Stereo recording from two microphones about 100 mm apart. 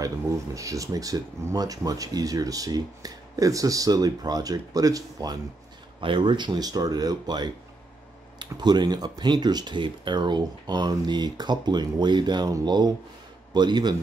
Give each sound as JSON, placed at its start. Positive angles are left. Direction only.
{"t": 0.6, "sound": "speech", "side_deg": -35}
{"t": 5.9, "sound": "speech", "side_deg": -60}